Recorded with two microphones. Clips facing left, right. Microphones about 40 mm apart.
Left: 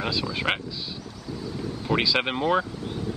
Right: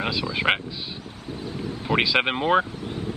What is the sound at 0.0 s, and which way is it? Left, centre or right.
Speech, right.